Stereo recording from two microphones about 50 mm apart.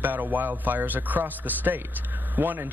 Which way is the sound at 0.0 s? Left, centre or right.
Right.